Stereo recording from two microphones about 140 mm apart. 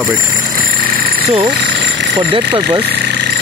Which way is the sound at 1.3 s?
50° right (ahead or behind).